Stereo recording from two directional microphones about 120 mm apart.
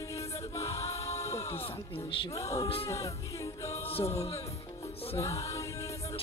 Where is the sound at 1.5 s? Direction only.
50° left (ahead or behind).